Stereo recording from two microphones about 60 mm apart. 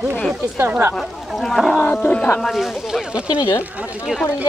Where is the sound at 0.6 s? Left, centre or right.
Right.